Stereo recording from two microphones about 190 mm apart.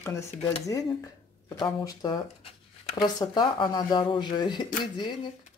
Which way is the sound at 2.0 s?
20° left (ahead or behind).